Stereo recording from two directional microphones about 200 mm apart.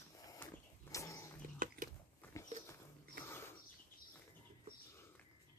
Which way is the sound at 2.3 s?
15° left (ahead or behind).